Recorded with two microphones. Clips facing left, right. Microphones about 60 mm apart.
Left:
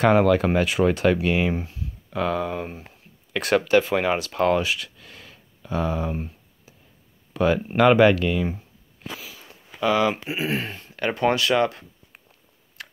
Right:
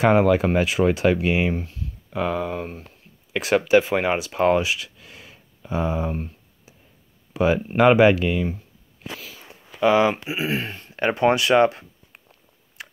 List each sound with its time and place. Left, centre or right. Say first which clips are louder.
0.0 s speech: right 1 dB; centre
1.5 s speech: even; centre
2.0 s speech: even; centre
4.6 s a sound: right 1 dB; centre
7.3 s speech: right 1 dB; centre
9.8 s speech: right 3 dB; right
10.1 s speech: right 1 dB; centre
11.0 s speech: right 3 dB; right
12.8 s a sound: right 1 dB; centre